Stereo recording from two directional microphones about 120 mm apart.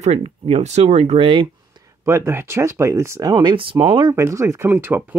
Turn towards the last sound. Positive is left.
turn(degrees=-20)  # may be behind; listen again after turning